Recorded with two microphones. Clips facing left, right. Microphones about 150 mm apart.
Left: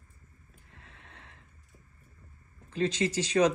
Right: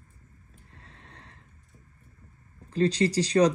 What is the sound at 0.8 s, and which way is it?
Neigh, 35° right (ahead or behind).